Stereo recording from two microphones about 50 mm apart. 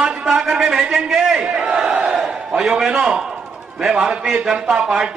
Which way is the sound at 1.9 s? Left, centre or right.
Right.